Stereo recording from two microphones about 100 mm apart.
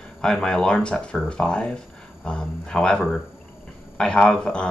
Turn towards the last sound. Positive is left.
turn(degrees=10)  # may be behind; listen again after turning